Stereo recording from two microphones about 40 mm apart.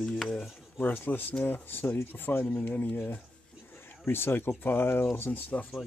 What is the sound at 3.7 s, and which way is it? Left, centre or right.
Speech, left.